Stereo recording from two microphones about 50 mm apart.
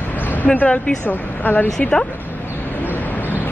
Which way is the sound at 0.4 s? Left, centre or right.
Left.